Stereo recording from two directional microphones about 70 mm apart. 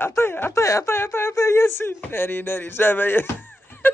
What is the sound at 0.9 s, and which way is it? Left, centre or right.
Speech, left.